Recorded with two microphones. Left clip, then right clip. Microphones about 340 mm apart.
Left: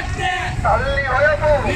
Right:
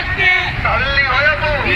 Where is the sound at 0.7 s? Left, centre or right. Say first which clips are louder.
Right 5 dB; left.